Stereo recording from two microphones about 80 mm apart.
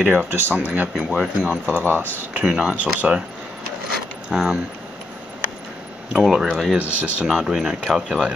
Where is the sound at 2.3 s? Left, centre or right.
Centre.